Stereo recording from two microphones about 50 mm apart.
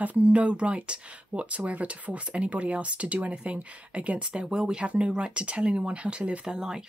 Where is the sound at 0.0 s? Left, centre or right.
Right.